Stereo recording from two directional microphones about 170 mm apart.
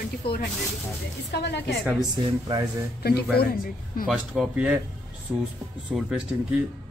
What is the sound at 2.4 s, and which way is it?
Speech, 20° right (ahead or behind).